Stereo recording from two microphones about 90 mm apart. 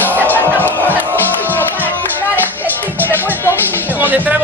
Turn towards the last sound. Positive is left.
turn(degrees=-20)  # may be behind; listen again after turning